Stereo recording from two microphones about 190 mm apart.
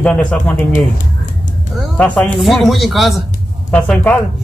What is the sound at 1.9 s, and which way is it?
Speech, 5° left (ahead or behind).